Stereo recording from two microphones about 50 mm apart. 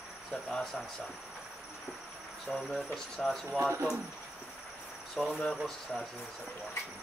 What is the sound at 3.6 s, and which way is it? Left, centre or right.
Speech, right.